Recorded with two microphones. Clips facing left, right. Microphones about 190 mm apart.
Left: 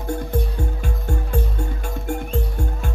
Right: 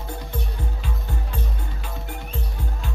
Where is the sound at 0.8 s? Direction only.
50° left (ahead or behind).